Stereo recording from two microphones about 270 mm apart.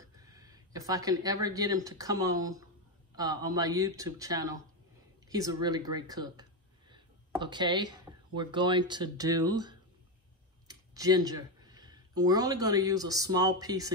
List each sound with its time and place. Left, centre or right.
0.0 s speech: centre
6.9 s a sound: centre
8.4 s speech: centre
10.7 s clicking: centre
12.2 s speech: centre